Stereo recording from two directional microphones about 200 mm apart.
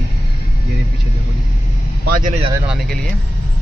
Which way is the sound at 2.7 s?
Centre (ahead or behind).